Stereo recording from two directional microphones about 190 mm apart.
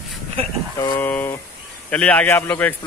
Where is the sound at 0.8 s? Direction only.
15° left (ahead or behind).